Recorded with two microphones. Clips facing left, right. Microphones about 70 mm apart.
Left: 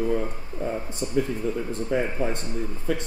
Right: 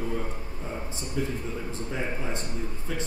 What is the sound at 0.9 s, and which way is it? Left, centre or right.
Speech, left.